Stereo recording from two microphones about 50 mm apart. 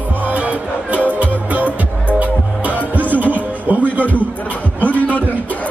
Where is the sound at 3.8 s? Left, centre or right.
Left.